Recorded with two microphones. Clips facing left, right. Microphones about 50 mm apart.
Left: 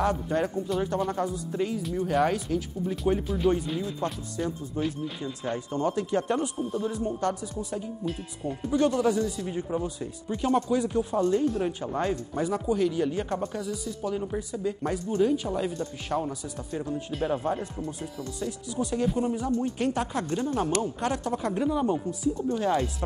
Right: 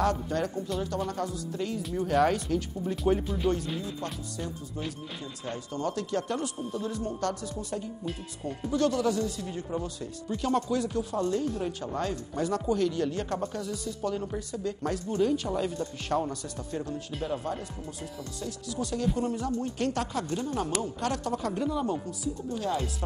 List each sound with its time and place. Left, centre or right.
0.0 s speech: centre
1.7 s speech: centre
4.0 s speech: left
4.7 s speech: centre
5.7 s speech: left
7.7 s speech: centre
8.7 s speech: left
17.2 s speech: left; by 19.9 s centre
19.9 s speech: centre